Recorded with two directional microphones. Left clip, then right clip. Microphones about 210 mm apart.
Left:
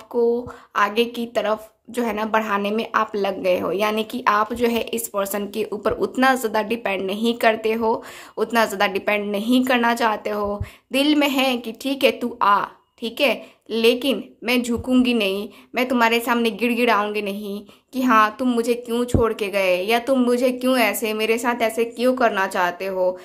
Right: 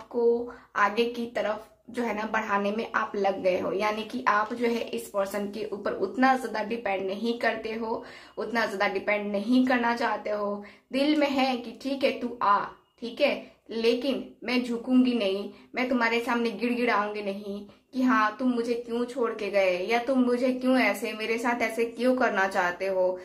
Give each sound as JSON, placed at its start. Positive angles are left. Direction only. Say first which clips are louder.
{"t": 0.7, "sound": "a woman's voice", "louder": "left 5 dB", "side_deg": 35}